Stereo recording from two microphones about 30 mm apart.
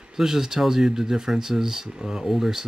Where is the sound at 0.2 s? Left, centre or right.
Centre.